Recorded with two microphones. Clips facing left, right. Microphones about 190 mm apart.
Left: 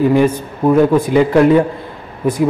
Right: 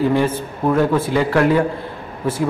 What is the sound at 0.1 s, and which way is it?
A man's voice, 15° left (ahead or behind).